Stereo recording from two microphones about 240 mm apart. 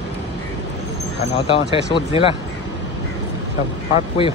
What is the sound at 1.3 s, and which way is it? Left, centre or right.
Speech, left.